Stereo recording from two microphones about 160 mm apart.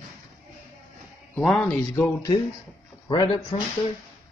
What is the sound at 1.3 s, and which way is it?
Speech, 5° left (ahead or behind).